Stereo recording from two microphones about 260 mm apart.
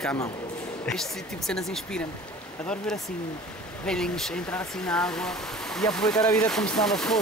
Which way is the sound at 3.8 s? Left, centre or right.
Centre.